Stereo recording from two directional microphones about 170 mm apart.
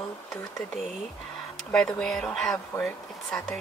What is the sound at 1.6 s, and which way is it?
Speech, 5° left (ahead or behind).